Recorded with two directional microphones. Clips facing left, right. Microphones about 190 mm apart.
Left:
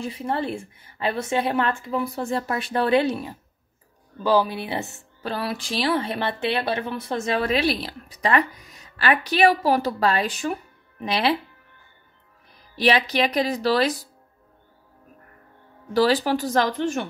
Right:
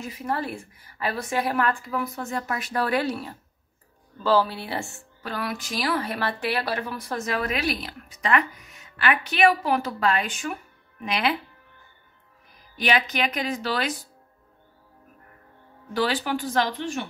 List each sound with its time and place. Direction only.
0.0 s a woman's voice: 30° left (ahead or behind)
5.2 s speech: 30° left (ahead or behind)
12.7 s speech: 35° left (ahead or behind)
15.9 s speech: 40° left (ahead or behind)